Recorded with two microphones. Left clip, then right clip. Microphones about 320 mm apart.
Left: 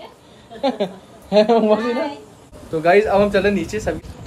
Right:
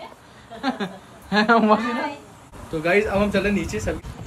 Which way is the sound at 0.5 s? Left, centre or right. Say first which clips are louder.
Left 6 dB; centre.